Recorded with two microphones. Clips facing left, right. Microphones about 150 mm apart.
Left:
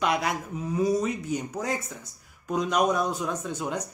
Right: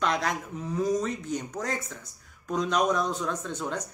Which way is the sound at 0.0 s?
10° left (ahead or behind).